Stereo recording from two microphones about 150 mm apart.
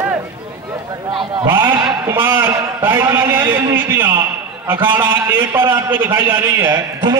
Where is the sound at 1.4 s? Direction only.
15° right (ahead or behind).